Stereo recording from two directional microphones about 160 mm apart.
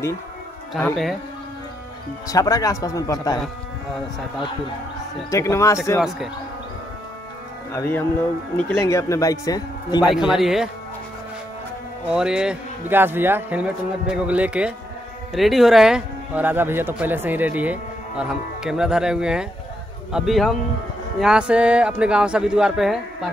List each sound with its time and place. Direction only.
2.2 s a man's voice: 20° left (ahead or behind)
5.3 s a man's voice: 20° left (ahead or behind)
5.9 s speech: 5° right (ahead or behind)
7.7 s a man's voice: 15° left (ahead or behind)
10.0 s speech: centre (ahead or behind)
12.1 s a man's voice: 5° right (ahead or behind)